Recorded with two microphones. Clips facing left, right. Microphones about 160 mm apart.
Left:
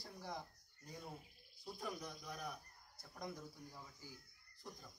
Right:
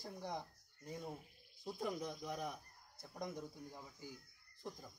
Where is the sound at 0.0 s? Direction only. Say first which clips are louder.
Right 4 dB; 20° right (ahead or behind).